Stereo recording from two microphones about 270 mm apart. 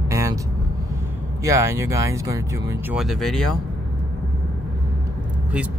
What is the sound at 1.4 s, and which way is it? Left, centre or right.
Speech, centre.